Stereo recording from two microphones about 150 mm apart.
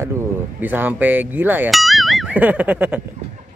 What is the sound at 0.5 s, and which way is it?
Speech, 10° right (ahead or behind).